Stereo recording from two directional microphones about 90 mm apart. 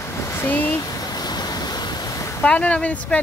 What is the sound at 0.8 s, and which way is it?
Waves, 45° left (ahead or behind).